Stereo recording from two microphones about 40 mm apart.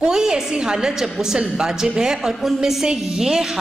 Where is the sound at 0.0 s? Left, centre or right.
Centre.